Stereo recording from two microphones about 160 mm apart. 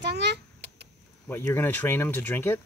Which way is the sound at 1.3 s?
15° left (ahead or behind).